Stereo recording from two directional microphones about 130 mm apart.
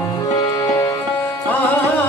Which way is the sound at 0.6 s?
30° left (ahead or behind).